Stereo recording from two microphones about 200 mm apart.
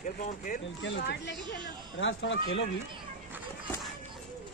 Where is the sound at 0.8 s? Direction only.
65° left (ahead or behind).